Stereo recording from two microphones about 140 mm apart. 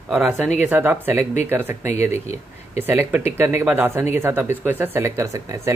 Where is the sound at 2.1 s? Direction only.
50° left (ahead or behind).